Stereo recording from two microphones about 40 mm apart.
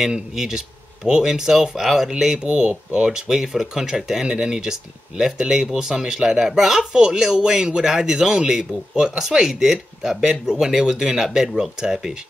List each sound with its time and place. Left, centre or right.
0.4 s speech: centre
2.4 s speech: right